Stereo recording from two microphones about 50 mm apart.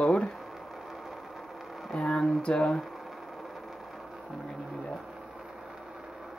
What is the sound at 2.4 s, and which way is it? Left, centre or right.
Speech, left.